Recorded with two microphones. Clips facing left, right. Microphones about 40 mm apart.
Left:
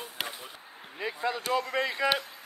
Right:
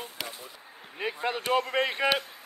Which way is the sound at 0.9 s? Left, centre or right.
Right.